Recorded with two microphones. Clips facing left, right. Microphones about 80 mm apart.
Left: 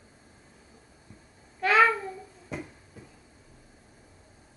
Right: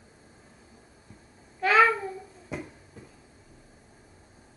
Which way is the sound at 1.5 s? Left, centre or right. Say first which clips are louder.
Right 1 dB; centre.